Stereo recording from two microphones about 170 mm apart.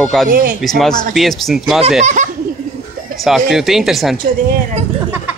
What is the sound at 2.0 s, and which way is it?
Speech, 45° right (ahead or behind).